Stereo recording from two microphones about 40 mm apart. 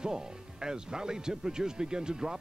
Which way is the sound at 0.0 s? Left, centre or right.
Centre.